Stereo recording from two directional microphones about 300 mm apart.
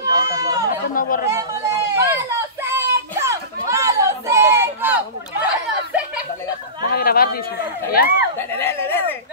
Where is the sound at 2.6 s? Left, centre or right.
Centre.